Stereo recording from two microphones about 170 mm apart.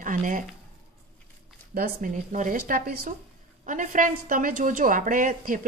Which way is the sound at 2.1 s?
45° right (ahead or behind).